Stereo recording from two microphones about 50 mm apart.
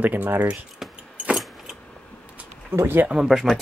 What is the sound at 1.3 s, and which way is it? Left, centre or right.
Keys jangling, centre.